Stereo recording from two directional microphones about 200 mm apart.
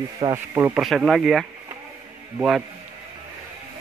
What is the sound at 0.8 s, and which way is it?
Speech, centre (ahead or behind).